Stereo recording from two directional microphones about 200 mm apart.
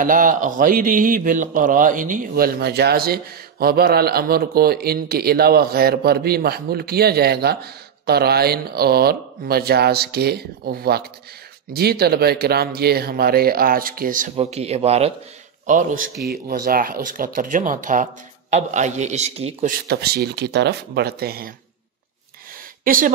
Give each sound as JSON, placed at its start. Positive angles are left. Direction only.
{"t": 0.0, "sound": "a man's voice", "side_deg": -40}
{"t": 14.3, "sound": "speech", "side_deg": -30}
{"t": 15.6, "sound": "speech", "side_deg": -40}
{"t": 19.9, "sound": "a man's voice", "side_deg": -50}
{"t": 22.8, "sound": "a man's voice", "side_deg": -45}